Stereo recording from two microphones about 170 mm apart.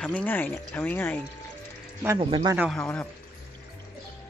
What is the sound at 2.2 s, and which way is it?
Speech, 30° right (ahead or behind).